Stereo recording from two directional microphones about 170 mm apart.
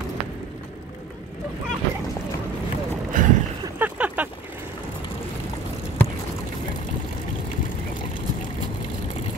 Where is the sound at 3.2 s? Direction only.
50° right (ahead or behind).